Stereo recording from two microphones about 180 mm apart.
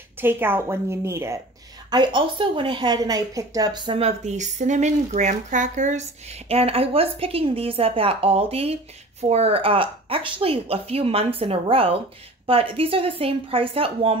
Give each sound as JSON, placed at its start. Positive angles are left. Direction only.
{"t": 0.2, "sound": "a woman's voice", "side_deg": -10}